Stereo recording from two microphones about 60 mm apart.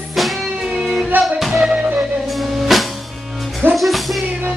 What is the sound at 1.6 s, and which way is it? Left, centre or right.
Music, centre.